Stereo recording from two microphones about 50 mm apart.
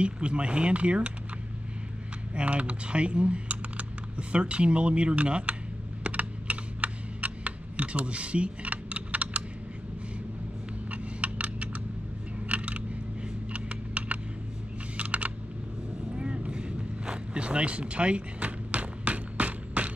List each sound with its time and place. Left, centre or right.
0.0 s speech: right
2.3 s speech: right
6.0 s typing: right
10.9 s computer keyboard: right
16.2 s vehicle: right